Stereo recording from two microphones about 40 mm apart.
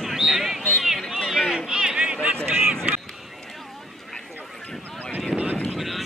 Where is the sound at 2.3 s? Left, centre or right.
Right.